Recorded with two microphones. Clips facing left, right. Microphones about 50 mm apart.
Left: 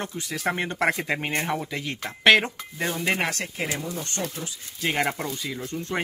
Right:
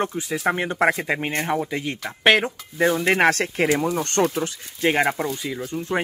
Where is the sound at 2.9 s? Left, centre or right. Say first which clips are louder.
Right 7 dB; right.